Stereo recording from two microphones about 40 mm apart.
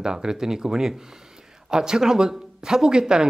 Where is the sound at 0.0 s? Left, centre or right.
Centre.